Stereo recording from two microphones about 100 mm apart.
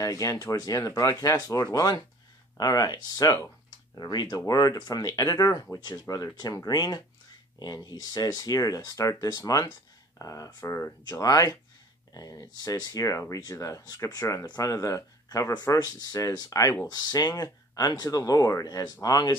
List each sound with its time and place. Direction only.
0.0 s speech: 35° left (ahead or behind)
11.1 s speech: 35° left (ahead or behind)